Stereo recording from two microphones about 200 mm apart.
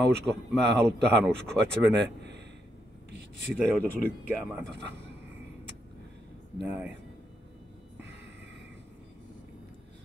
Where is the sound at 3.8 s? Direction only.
5° left (ahead or behind).